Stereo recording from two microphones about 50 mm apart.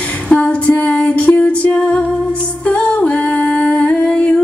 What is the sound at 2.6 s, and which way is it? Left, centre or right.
Humming, left.